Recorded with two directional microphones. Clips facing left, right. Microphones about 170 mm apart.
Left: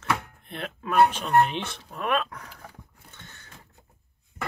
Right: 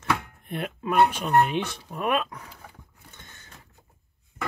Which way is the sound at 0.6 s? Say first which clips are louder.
Even; 10° right (ahead or behind).